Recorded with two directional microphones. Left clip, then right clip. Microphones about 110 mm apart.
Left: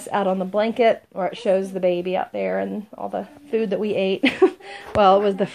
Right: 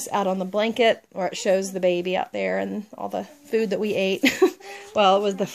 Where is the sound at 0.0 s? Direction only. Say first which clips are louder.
Left 2 dB; 40° right (ahead or behind).